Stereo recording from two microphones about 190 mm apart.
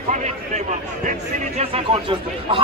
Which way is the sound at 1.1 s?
35° right (ahead or behind).